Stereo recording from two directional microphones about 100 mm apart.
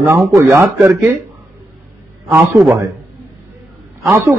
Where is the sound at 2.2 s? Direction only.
25° right (ahead or behind).